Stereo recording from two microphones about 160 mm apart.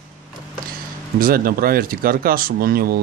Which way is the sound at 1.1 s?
65° right (ahead or behind).